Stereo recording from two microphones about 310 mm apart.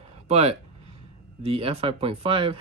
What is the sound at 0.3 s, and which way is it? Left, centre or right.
Speech, centre.